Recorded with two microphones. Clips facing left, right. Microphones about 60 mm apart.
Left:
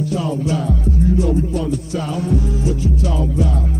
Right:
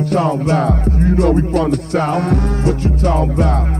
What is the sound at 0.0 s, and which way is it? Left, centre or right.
Music, right.